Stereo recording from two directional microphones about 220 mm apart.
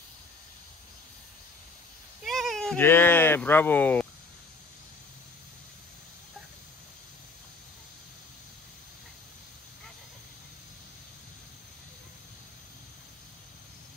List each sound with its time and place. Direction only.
2.2 s speech: centre (ahead or behind)